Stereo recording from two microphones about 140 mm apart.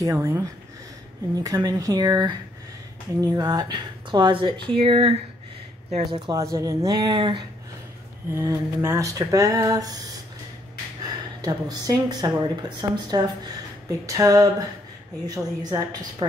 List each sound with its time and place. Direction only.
0.0 s speech: 25° right (ahead or behind)
3.3 s speech: 30° right (ahead or behind)
5.9 s speech: 55° right (ahead or behind)
6.2 s speech: 25° right (ahead or behind)
8.3 s speech: 20° right (ahead or behind)
11.0 s speech: 30° right (ahead or behind)